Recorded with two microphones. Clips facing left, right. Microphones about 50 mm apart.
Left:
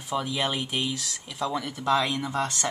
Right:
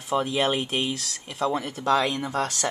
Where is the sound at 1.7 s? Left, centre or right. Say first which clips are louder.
Even; centre.